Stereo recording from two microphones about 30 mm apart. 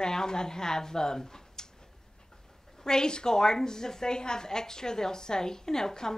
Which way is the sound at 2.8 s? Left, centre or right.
Left.